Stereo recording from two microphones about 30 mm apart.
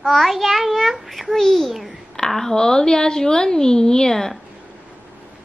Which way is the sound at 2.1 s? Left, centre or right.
Centre.